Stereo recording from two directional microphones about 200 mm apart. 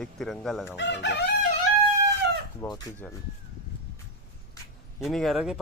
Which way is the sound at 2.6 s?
20° left (ahead or behind).